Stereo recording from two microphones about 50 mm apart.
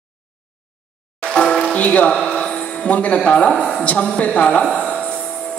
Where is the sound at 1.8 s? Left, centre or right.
Left.